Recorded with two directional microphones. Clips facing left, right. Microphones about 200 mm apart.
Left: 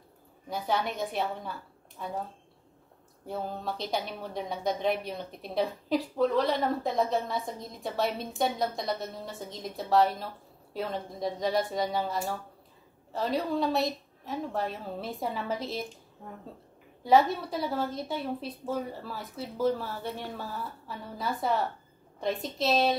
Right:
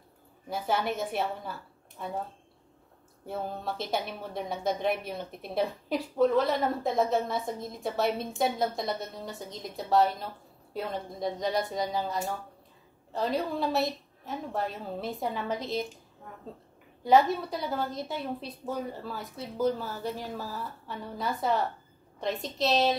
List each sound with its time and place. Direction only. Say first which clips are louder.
0.5 s a woman's voice: right 1 dB; centre (ahead or behind)
3.3 s speech: even; centre (ahead or behind)
17.0 s speech: right 1 dB; centre (ahead or behind)